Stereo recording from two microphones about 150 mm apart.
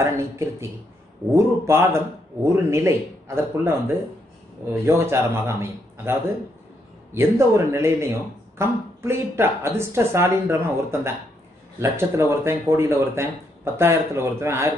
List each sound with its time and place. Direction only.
0.0 s speech: 15° right (ahead or behind)
7.2 s speech: 20° right (ahead or behind)